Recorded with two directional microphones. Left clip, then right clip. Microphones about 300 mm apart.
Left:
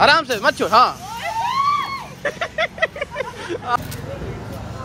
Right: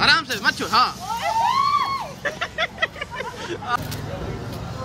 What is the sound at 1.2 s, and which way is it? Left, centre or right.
Vehicle, right.